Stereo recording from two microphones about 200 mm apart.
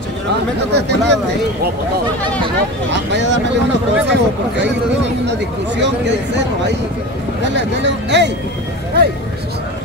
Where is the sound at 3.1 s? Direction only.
60° right (ahead or behind).